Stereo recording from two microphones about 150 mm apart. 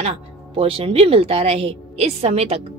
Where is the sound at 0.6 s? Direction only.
40° right (ahead or behind).